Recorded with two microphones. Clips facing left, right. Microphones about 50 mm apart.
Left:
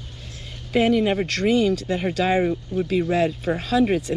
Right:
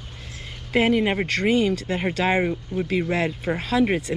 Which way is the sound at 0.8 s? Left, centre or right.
Right.